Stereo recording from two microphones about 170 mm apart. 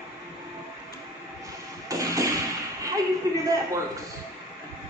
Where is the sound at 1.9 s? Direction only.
20° right (ahead or behind).